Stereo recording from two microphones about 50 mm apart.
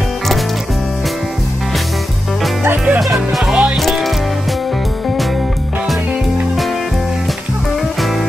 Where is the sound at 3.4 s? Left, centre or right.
Right.